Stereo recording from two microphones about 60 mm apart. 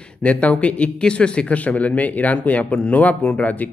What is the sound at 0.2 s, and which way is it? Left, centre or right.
Speech, left.